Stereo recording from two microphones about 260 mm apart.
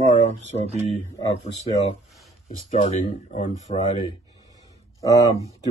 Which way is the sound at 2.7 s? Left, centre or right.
Left.